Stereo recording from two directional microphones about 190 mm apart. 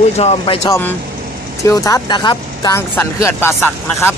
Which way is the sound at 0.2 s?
35° left (ahead or behind).